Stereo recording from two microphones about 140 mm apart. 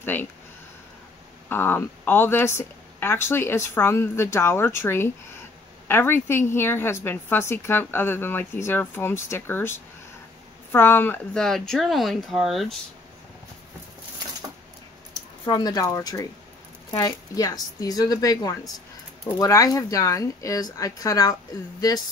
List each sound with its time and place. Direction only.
0.0 s speech: 15° left (ahead or behind)
1.5 s a woman's voice: 15° left (ahead or behind)
11.3 s speech: 5° left (ahead or behind)
15.4 s speech: 30° left (ahead or behind)